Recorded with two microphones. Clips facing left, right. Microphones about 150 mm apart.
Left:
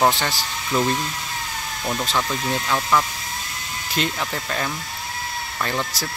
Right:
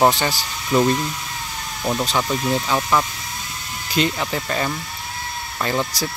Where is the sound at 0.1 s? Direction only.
Centre (ahead or behind).